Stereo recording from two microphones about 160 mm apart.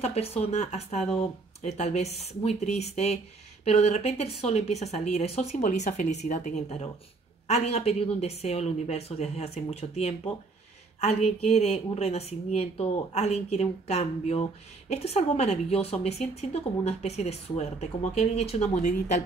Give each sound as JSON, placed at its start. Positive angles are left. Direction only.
{"t": 0.0, "sound": "a woman's voice", "side_deg": 40}